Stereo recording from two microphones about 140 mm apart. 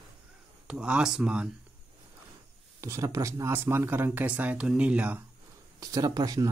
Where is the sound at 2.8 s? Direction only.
20° right (ahead or behind).